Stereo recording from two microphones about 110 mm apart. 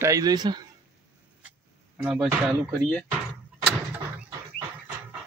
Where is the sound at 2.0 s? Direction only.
5° right (ahead or behind).